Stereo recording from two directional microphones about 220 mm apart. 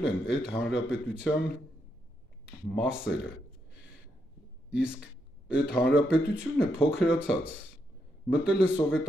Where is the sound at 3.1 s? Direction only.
55° left (ahead or behind).